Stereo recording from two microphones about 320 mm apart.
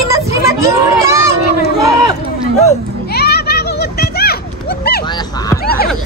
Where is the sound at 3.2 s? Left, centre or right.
Left.